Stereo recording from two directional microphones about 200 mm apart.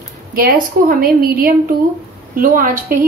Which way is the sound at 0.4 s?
45° right (ahead or behind).